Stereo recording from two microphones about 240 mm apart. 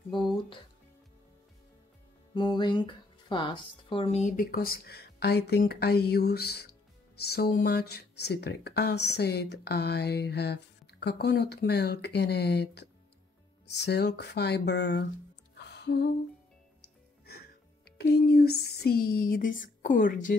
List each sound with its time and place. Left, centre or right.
2.3 s speech: centre; by 15.0 s left
15.5 s music: left
17.9 s speech: left